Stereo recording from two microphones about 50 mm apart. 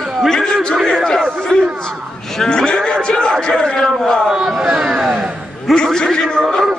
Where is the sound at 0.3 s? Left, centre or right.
Centre.